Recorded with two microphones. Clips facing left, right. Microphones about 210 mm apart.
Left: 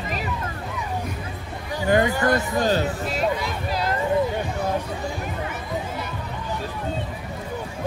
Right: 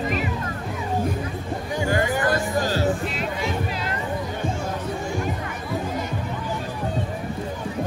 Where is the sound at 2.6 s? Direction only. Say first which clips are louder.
Left 2 dB; 20° left (ahead or behind).